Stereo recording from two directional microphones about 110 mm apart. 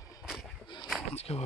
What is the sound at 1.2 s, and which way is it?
Speech, 70° left (ahead or behind).